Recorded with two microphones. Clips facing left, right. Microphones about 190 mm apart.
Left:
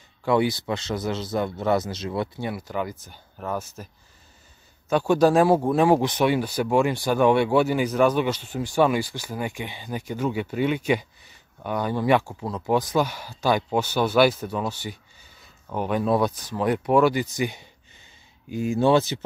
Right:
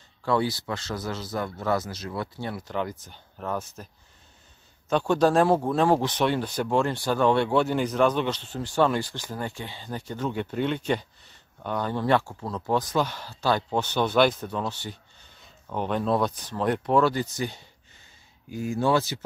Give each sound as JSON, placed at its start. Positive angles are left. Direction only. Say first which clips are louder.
{"t": 0.2, "sound": "speech", "louder": "left 4 dB", "side_deg": 15}
{"t": 2.5, "sound": "speech", "louder": "left 1 dB", "side_deg": 5}